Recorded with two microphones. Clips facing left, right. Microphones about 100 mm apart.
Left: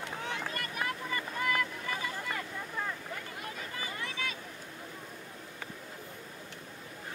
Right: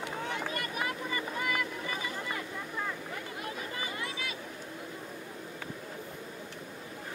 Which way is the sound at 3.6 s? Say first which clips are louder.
Even; 15° right (ahead or behind).